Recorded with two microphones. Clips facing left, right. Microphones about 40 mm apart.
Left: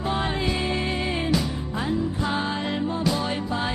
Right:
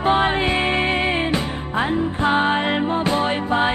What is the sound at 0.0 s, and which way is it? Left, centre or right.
Music, right.